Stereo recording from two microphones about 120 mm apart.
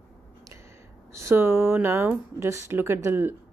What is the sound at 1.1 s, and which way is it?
Speech, 25° right (ahead or behind).